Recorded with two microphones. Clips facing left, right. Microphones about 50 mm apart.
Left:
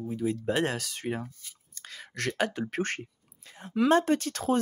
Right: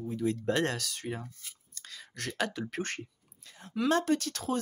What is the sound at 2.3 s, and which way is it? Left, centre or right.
Speech, left.